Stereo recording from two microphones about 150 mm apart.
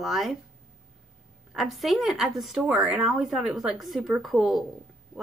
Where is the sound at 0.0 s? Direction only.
Centre (ahead or behind).